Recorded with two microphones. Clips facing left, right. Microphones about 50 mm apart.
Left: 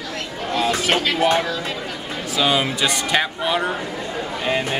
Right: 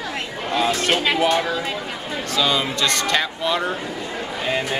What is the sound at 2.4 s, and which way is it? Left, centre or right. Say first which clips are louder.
Speech: left 2 dB; left.